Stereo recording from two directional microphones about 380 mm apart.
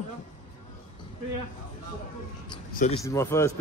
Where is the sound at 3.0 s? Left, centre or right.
Centre.